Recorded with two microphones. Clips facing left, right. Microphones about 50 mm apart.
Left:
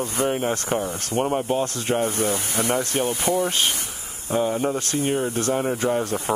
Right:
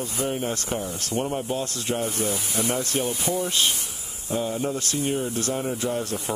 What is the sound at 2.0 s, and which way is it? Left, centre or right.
Speech, left.